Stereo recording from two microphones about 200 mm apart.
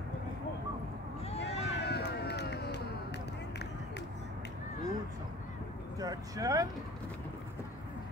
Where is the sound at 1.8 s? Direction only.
55° left (ahead or behind).